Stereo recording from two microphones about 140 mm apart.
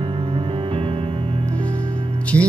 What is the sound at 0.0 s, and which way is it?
Music, 40° right (ahead or behind).